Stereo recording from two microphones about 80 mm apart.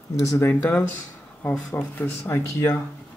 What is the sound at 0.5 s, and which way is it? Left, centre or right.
Speech, left.